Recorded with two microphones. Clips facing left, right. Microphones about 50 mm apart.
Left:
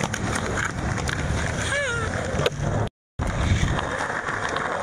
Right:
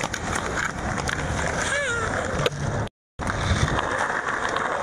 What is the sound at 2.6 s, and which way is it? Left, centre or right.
Vehicle, left.